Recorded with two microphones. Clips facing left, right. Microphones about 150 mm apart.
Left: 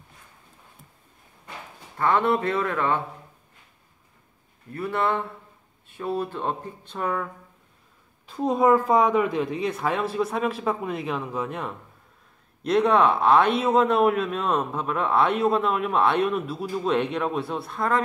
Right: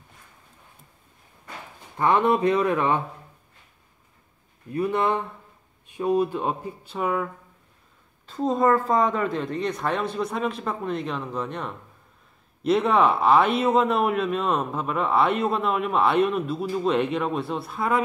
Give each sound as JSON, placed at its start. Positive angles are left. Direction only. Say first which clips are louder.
{"t": 2.0, "sound": "speech", "louder": "right 2 dB", "side_deg": -15}
{"t": 4.7, "sound": "speech", "louder": "right 2 dB", "side_deg": -15}
{"t": 8.3, "sound": "a man's voice", "louder": "left 1 dB", "side_deg": 10}